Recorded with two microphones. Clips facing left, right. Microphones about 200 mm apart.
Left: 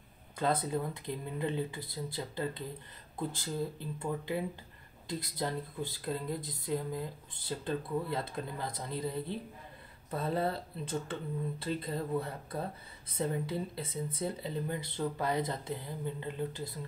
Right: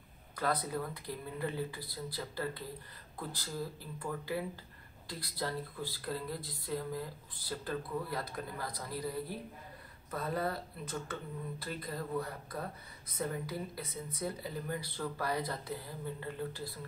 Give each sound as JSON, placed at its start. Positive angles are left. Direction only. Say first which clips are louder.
{"t": 0.4, "sound": "speech", "louder": "left 3 dB", "side_deg": 25}